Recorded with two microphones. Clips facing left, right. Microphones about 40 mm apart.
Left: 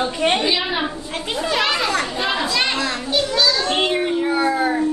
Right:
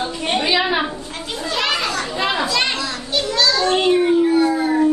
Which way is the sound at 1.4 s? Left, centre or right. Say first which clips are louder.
Left 1 dB; centre.